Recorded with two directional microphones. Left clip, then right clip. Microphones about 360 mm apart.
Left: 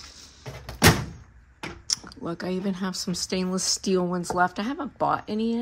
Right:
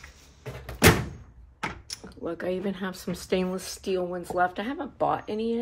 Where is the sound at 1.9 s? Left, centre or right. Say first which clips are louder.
Left 4 dB; centre.